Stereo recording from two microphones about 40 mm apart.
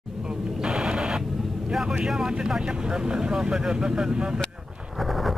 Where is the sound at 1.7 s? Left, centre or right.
Centre.